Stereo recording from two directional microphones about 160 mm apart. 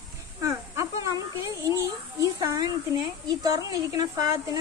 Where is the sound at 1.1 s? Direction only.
25° right (ahead or behind).